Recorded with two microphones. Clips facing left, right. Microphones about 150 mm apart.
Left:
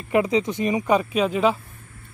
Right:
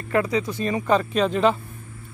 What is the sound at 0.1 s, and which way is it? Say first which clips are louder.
Speech: left 2 dB; 20° left (ahead or behind).